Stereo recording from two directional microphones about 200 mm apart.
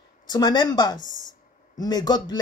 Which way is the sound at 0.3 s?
20° left (ahead or behind).